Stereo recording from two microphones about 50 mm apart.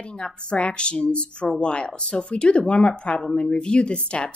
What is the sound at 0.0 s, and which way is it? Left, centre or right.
A woman's voice, centre.